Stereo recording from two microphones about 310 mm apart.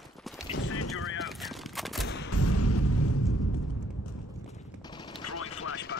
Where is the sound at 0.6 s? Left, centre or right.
Left.